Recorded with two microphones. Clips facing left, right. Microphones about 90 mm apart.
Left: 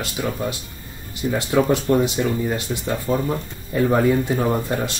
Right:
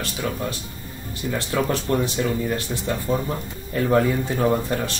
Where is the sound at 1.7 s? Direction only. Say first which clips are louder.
Left 4 dB; 20° left (ahead or behind).